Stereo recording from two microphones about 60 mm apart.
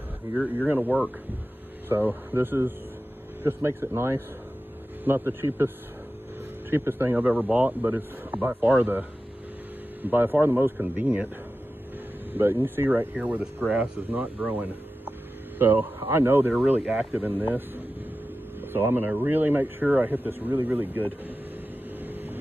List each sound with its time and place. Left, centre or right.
0.6 s speech: right
6.7 s speech: right
10.0 s speech: right
12.3 s speech: right
16.8 s speech: centre
17.4 s speech: right
22.0 s vehicle: right